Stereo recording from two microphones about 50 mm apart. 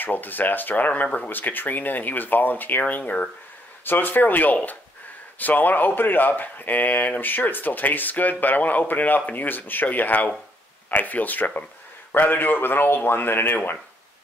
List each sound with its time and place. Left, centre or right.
0.0 s speech: left
3.8 s speech: left